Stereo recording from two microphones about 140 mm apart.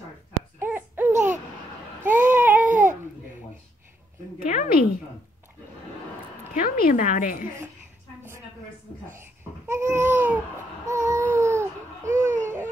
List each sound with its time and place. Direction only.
0.6 s a sound: 15° right (ahead or behind)
1.1 s babbling: 60° right (ahead or behind)
2.0 s child singing: 65° right (ahead or behind)
2.3 s baby cry: 15° right (ahead or behind)
2.7 s babbling: 65° right (ahead or behind)
4.4 s speech: 75° left (ahead or behind)
6.5 s a woman's voice: 85° left
9.1 s babbling: 20° right (ahead or behind)
10.9 s baby cry: 20° right (ahead or behind)